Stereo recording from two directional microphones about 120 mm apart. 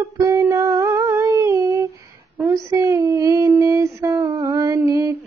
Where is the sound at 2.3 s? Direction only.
25° right (ahead or behind).